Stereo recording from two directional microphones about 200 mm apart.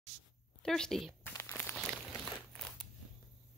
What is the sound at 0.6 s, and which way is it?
Speech, 5° left (ahead or behind).